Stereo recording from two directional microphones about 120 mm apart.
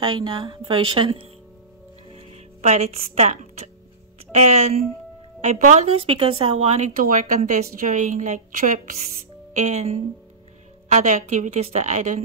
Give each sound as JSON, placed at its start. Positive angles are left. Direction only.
{"t": 0.0, "sound": "a woman's voice", "side_deg": -40}
{"t": 2.1, "sound": "music", "side_deg": -60}
{"t": 4.3, "sound": "speech", "side_deg": -65}
{"t": 5.4, "sound": "speech", "side_deg": -75}
{"t": 9.6, "sound": "speech", "side_deg": -80}